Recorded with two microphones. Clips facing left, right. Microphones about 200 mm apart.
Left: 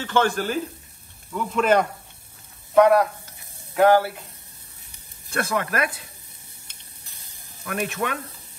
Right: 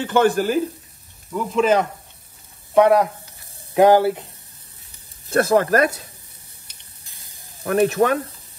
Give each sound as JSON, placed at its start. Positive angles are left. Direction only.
{"t": 0.1, "sound": "speech", "side_deg": -15}
{"t": 1.3, "sound": "speech", "side_deg": -5}
{"t": 2.7, "sound": "speech", "side_deg": -15}
{"t": 5.3, "sound": "speech", "side_deg": -35}
{"t": 7.6, "sound": "speech", "side_deg": -35}